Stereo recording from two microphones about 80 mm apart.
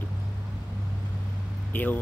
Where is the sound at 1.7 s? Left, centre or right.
Left.